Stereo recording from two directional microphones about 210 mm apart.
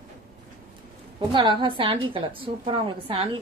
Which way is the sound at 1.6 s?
25° right (ahead or behind).